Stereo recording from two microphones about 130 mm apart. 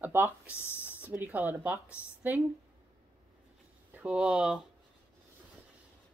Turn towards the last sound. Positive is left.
turn(degrees=-5)  # may be behind; listen again after turning